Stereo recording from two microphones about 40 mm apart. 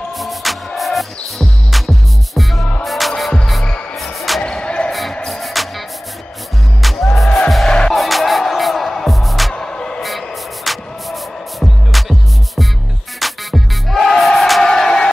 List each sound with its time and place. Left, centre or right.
0.2 s music: centre
4.4 s music: left
5.2 s music: centre
7.6 s music: left
7.9 s music: centre
9.5 s music: centre
10.0 s music: centre
14.6 s a sound: centre